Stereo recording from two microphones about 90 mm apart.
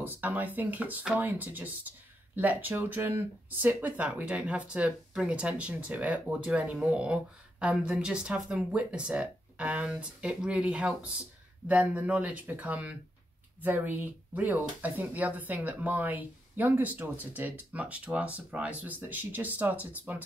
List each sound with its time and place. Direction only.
0.0 s speech: 20° right (ahead or behind)